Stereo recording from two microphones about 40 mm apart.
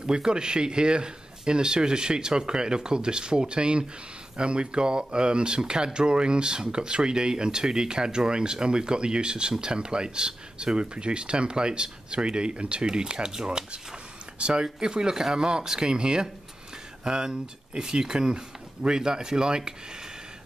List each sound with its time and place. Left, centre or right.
0.0 s speech: right